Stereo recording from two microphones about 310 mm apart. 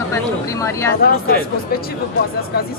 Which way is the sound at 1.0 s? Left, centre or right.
Left.